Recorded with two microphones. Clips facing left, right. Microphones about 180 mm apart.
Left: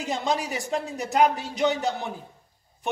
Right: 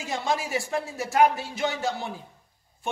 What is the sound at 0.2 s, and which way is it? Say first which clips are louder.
A man's voice: even; 20° left (ahead or behind).